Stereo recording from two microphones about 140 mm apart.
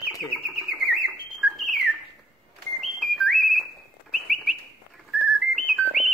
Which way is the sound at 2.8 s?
Centre (ahead or behind).